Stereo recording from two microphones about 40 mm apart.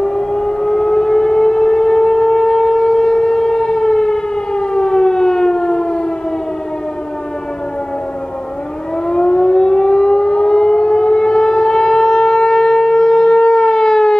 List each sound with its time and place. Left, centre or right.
0.0 s civil defense siren: centre
9.0 s civil defense siren: left